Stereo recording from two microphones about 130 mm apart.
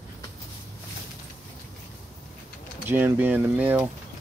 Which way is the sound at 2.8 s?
15° right (ahead or behind).